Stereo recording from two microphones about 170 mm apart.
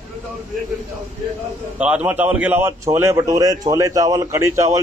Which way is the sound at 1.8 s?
10° right (ahead or behind).